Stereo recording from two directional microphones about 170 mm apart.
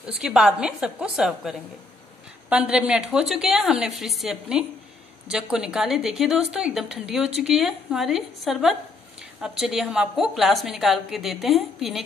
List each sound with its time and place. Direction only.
0.0 s a woman's voice: 5° right (ahead or behind)